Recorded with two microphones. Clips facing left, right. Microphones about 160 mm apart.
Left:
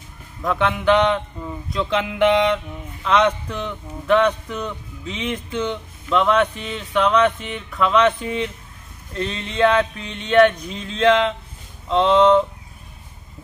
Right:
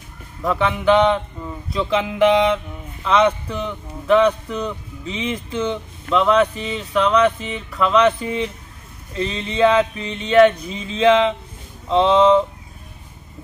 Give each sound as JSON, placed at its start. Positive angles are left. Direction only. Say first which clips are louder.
{"t": 0.4, "sound": "speech", "louder": "right 1 dB", "side_deg": 0}